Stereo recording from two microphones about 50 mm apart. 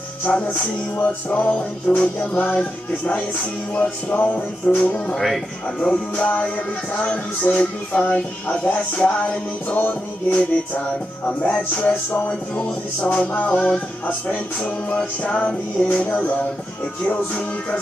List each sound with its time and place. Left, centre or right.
0.3 s music: left
0.9 s music: left
5.1 s speech: centre
5.8 s music: left
12.3 s music: left